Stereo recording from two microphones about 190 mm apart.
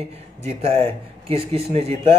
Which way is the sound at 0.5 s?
30° right (ahead or behind).